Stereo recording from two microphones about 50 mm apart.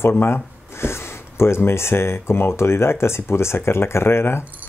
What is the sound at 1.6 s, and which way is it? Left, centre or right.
Speech, left.